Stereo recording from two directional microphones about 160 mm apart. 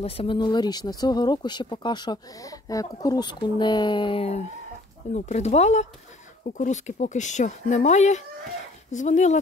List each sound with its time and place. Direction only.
0.0 s speech: 35° left (ahead or behind)